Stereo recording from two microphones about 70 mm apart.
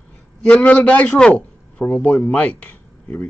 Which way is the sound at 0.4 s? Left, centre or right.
Centre.